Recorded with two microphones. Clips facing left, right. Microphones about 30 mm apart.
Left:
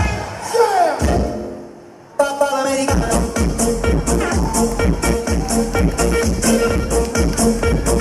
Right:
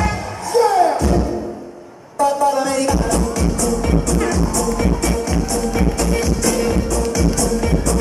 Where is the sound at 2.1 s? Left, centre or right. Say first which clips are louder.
Right 1 dB; left.